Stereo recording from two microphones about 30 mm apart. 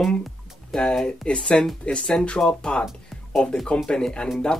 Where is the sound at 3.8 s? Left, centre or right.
Left.